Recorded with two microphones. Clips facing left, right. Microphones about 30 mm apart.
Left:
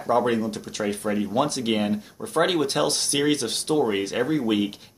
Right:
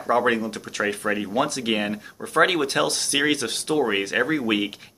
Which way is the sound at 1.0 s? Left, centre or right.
Right.